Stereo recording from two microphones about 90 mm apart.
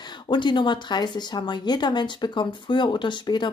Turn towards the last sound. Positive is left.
turn(degrees=60)  # may be behind; listen again after turning